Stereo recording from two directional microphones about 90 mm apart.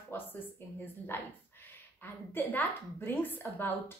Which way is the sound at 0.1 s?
20° left (ahead or behind).